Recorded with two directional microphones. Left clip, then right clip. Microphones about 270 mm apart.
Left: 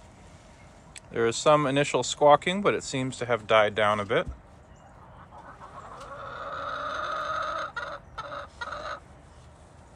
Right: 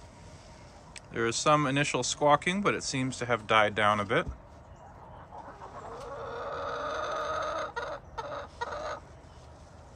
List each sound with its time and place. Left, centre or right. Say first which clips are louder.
0.9 s speech: left 4 dB; centre
5.9 s chicken: even; right